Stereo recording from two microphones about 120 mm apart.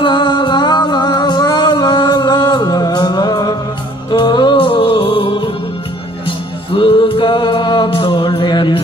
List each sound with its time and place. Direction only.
0.0 s music: 40° left (ahead or behind)